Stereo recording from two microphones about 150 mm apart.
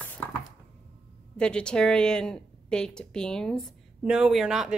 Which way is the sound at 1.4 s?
5° left (ahead or behind).